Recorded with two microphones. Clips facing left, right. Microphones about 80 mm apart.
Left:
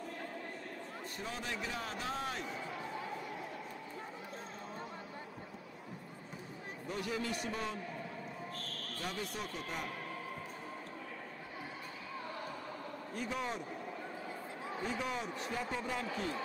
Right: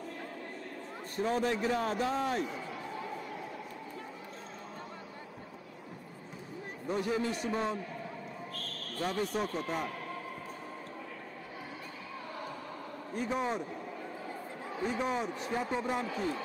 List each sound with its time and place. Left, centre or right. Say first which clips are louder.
1.1 s a man's voice: right 12 dB; right
6.9 s a man's voice: right 6 dB; right
9.0 s a man's voice: right 9 dB; right
13.1 s a man's voice: right 6 dB; right
15.0 s a man's voice: right 5 dB; right